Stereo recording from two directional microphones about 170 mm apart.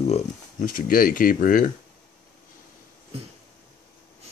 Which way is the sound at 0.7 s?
55° left (ahead or behind).